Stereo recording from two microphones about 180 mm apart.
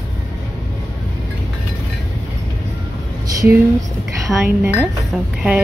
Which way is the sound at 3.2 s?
15° right (ahead or behind).